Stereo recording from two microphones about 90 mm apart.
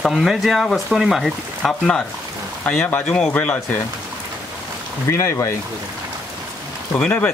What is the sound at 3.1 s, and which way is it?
Speech, 10° left (ahead or behind).